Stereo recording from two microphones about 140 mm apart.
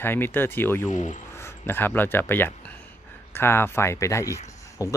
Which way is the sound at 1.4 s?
15° left (ahead or behind).